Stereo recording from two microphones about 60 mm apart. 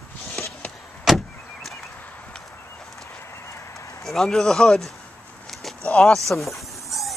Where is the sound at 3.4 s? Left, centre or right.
Left.